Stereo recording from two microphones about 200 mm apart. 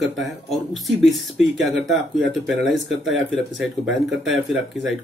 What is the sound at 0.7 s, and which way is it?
Speech, centre (ahead or behind).